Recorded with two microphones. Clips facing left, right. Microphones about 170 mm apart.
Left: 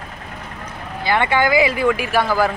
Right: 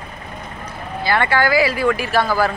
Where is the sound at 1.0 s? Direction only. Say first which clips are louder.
Even; 20° left (ahead or behind).